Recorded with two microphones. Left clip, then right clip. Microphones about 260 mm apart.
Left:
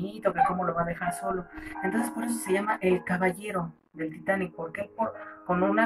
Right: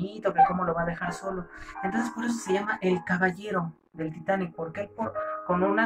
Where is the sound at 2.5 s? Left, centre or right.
Centre.